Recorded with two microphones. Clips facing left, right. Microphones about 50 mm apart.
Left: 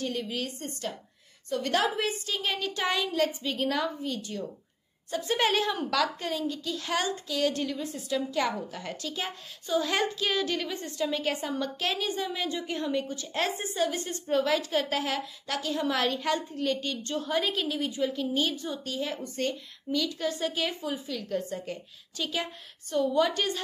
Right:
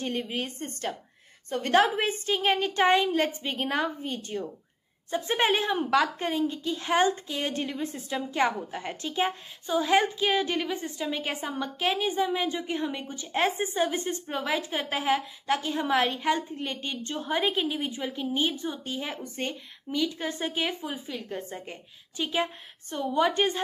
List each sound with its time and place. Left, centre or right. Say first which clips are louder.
0.0 s a woman's voice: right 1 dB; right